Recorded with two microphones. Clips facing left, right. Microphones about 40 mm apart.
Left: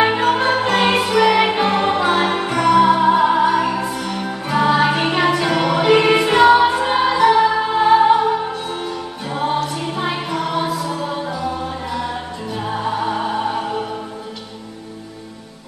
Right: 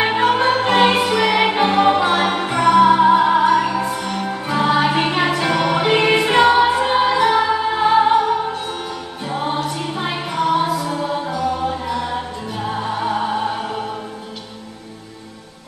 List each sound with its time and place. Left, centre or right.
0.3 s music: centre
0.7 s music: centre
0.9 s music: centre
11.1 s music: centre